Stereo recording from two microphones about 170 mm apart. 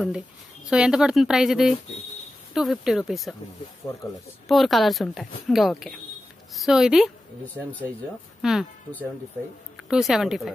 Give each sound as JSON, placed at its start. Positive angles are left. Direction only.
{"t": 0.7, "sound": "a woman's voice", "side_deg": -5}
{"t": 3.8, "sound": "speech", "side_deg": 20}
{"t": 4.5, "sound": "a woman's voice", "side_deg": 0}
{"t": 8.4, "sound": "speech", "side_deg": 0}
{"t": 9.8, "sound": "a woman's voice", "side_deg": 0}